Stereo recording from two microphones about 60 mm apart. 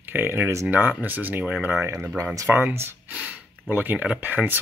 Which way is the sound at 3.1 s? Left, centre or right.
Right.